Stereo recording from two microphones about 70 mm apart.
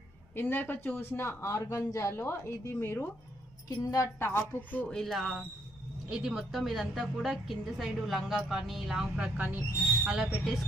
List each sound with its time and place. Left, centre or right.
0.4 s speech: left
3.6 s a woman's voice: left
4.2 s speech: left
4.6 s speech: left
4.8 s speech: centre
5.1 s a woman's voice: centre